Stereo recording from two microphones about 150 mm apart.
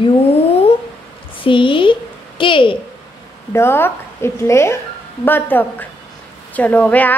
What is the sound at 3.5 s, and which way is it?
A woman's voice, 15° left (ahead or behind).